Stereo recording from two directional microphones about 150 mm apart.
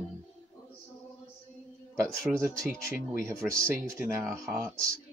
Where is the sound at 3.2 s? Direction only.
20° right (ahead or behind).